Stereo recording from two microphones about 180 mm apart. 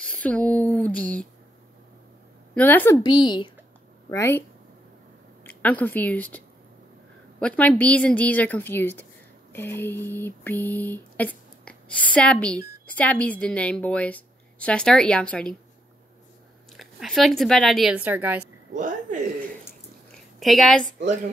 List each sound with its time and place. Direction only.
0.0 s a sound: 5° left (ahead or behind)
2.5 s a woman's voice: 10° left (ahead or behind)
3.0 s a woman's voice: 25° left (ahead or behind)
4.1 s a woman's voice: 15° left (ahead or behind)
9.5 s a sound: 10° left (ahead or behind)
16.7 s speech: centre (ahead or behind)
18.8 s speech: 45° right (ahead or behind)
20.3 s a woman's voice: centre (ahead or behind)